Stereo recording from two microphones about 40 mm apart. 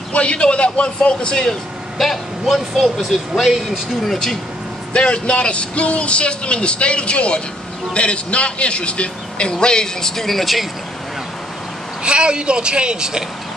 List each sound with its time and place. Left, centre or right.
0.1 s a man's voice: left
1.5 s speech: centre
4.9 s a man's voice: left; by 10.7 s centre
12.0 s a woman's voice: right